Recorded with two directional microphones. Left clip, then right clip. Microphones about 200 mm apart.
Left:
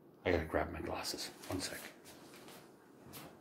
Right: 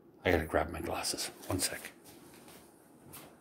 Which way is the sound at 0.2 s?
45° right (ahead or behind).